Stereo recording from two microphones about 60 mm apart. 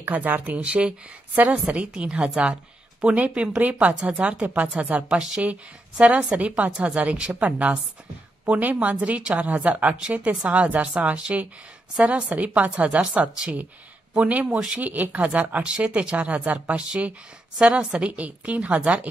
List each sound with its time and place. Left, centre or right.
0.0 s speech: right; by 3.2 s centre
3.6 s speech: right
5.1 s a woman's voice: centre
5.4 s speech: right